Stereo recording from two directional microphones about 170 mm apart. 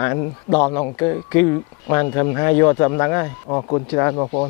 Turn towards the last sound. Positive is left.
turn(degrees=20)  # may be behind; listen again after turning